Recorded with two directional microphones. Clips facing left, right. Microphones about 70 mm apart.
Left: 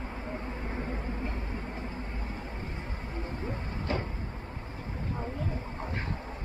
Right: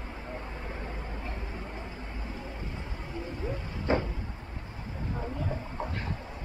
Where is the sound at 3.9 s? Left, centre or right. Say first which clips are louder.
Right 6 dB; right.